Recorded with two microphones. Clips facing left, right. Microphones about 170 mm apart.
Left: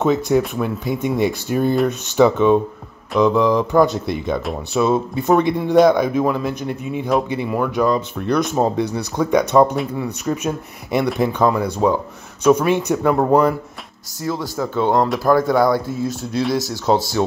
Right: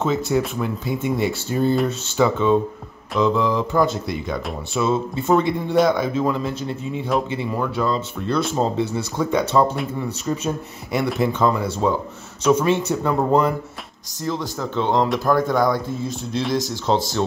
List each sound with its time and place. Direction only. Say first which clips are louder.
0.0 s speech: left 4 dB; 15° left (ahead or behind)
14.6 s speech: left 3 dB; 10° left (ahead or behind)